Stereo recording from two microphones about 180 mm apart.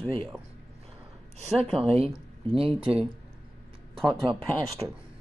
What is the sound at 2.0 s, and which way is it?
Speech, 30° right (ahead or behind).